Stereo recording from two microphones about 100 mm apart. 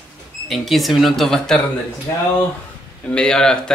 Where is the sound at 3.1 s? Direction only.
10° left (ahead or behind).